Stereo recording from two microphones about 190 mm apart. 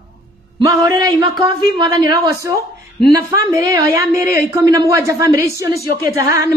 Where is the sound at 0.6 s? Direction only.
20° right (ahead or behind).